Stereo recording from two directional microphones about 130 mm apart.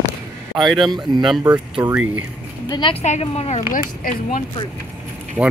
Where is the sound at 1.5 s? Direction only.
35° right (ahead or behind).